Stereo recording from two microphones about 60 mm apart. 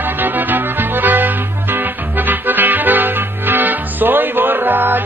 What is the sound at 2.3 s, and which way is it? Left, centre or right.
Music, right.